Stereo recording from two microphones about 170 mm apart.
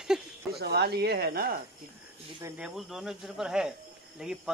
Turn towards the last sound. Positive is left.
turn(degrees=-5)  # may be behind; listen again after turning